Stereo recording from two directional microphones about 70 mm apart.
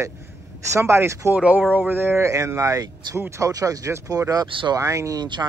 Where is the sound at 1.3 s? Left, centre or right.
Centre.